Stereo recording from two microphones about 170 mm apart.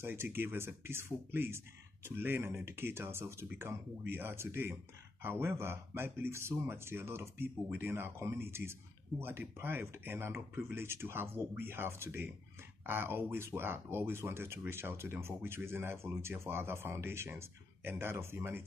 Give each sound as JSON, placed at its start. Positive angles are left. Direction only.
{"t": 0.0, "sound": "speech", "side_deg": -15}